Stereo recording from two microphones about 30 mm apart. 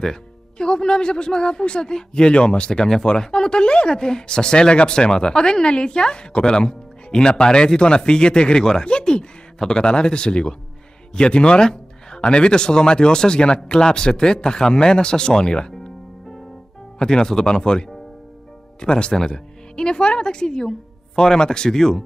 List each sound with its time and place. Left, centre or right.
0.0 s speech: left
17.0 s speech: left